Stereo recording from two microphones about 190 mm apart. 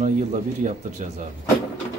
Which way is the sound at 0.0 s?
40° right (ahead or behind).